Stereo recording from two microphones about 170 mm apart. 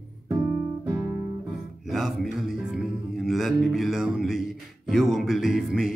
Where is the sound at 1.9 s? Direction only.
Centre (ahead or behind).